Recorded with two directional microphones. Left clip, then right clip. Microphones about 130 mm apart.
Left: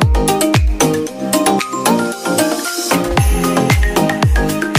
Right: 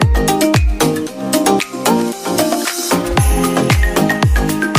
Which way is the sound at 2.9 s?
Centre (ahead or behind).